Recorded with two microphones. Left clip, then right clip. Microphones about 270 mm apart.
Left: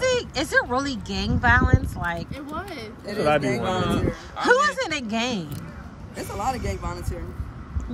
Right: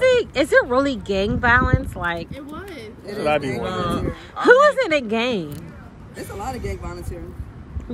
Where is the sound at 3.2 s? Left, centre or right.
Left.